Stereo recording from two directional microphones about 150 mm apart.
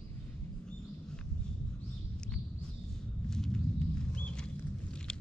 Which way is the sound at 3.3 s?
5° left (ahead or behind).